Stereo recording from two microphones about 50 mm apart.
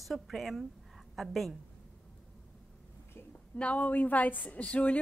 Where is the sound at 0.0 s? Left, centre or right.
Centre.